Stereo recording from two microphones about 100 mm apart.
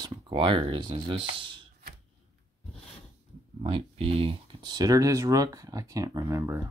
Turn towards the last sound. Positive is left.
turn(degrees=-30)  # may be behind; listen again after turning